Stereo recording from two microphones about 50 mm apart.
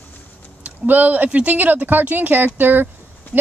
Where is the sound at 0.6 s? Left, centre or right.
Right.